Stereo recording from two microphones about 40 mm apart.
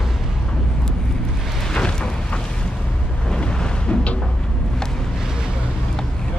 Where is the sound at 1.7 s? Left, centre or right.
Centre.